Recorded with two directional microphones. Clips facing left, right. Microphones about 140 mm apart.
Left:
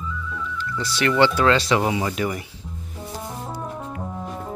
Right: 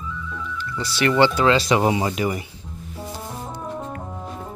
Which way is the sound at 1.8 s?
25° right (ahead or behind).